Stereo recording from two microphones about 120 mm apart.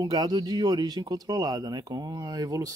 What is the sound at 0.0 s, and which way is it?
Speech, 35° right (ahead or behind).